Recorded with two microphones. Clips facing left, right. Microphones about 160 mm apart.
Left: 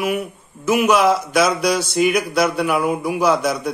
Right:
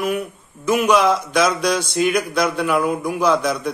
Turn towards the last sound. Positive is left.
turn(degrees=5)  # may be behind; listen again after turning